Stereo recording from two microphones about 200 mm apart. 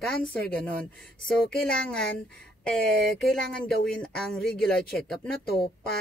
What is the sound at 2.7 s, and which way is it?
Speech, 5° left (ahead or behind).